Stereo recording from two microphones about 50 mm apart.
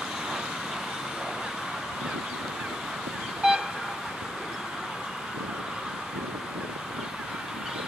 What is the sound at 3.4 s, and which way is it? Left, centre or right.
Vehicle, centre.